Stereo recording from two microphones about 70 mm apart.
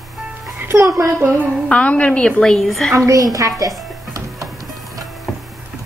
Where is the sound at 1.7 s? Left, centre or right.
Centre.